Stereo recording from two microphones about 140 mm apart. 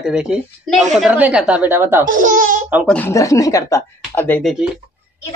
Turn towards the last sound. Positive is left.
turn(degrees=15)  # may be behind; listen again after turning